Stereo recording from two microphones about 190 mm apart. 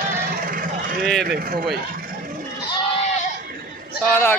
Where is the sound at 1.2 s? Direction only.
55° right (ahead or behind).